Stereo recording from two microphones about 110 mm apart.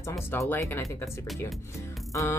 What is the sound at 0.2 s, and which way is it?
Speech, 20° left (ahead or behind).